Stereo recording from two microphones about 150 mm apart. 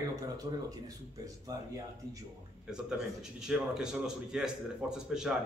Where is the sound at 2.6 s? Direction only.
5° right (ahead or behind).